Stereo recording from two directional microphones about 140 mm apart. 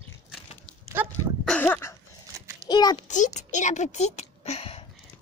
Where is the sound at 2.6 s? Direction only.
30° left (ahead or behind).